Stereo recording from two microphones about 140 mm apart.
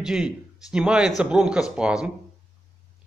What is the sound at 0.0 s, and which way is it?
A man's voice, 5° right (ahead or behind).